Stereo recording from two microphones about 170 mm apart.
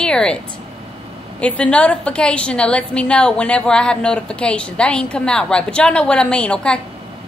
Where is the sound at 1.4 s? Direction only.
10° left (ahead or behind).